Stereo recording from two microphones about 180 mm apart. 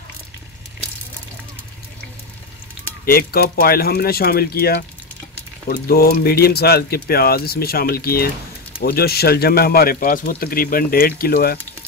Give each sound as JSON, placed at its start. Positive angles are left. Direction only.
{"t": 3.1, "sound": "speech", "side_deg": 60}